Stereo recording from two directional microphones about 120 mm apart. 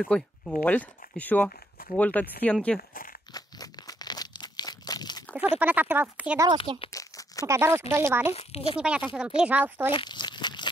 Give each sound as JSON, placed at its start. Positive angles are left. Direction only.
{"t": 0.0, "sound": "speech", "side_deg": 5}
{"t": 3.3, "sound": "crumpling", "side_deg": 30}
{"t": 5.6, "sound": "speech", "side_deg": -15}
{"t": 6.3, "sound": "speech", "side_deg": -30}
{"t": 6.9, "sound": "crumpling", "side_deg": 25}
{"t": 7.4, "sound": "speech", "side_deg": -25}
{"t": 8.4, "sound": "speech", "side_deg": 55}
{"t": 8.7, "sound": "speech", "side_deg": -10}
{"t": 9.9, "sound": "crumpling", "side_deg": 40}